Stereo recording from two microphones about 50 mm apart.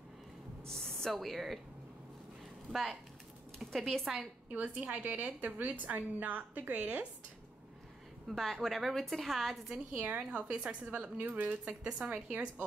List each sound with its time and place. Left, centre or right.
0.7 s speech: centre
2.7 s a woman's voice: centre
4.0 s a woman's voice: centre
4.5 s a woman's voice: right
8.4 s a woman's voice: centre
9.9 s speech: right
11.0 s a woman's voice: right
11.6 s speech: right